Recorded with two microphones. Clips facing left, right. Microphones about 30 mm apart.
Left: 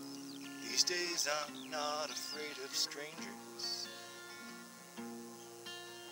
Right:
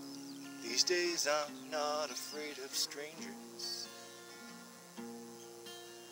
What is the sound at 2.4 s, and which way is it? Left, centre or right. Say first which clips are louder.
Speech: even; centre.